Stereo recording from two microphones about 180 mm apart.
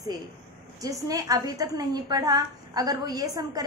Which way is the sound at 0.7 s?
20° right (ahead or behind).